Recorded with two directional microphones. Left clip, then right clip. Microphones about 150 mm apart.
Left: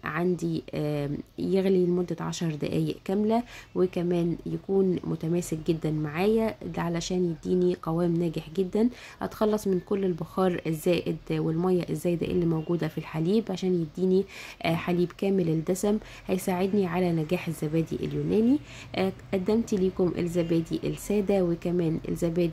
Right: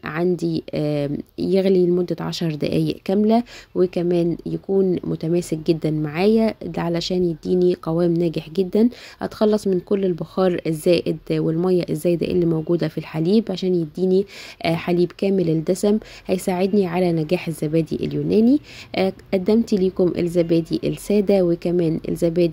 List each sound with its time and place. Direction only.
0.0 s speech: 30° right (ahead or behind)